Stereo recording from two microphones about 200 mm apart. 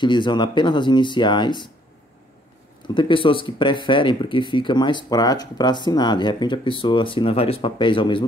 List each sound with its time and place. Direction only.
0.0 s speech: 25° left (ahead or behind)
2.9 s speech: 25° left (ahead or behind)